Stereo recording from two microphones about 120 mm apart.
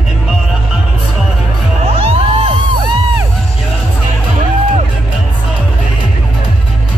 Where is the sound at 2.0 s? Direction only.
60° right (ahead or behind).